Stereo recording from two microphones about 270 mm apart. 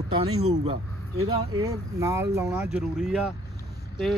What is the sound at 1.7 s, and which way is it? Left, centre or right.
Speech, centre.